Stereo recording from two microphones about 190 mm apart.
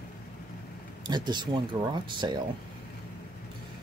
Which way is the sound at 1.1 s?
25° right (ahead or behind).